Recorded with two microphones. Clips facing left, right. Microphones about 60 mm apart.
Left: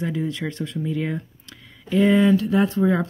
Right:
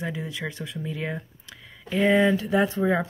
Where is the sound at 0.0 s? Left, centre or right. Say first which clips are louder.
Left 5 dB; centre.